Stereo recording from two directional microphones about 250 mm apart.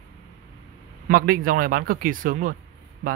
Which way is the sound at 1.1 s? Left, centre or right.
Right.